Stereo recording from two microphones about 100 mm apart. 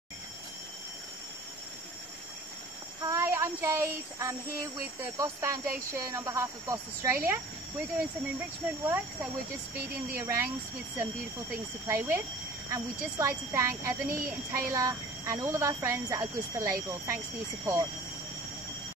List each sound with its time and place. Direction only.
3.0 s child singing: 30° right (ahead or behind)
5.1 s speech: 30° right (ahead or behind)
8.4 s speech: 20° right (ahead or behind)
11.9 s speech: 25° right (ahead or behind)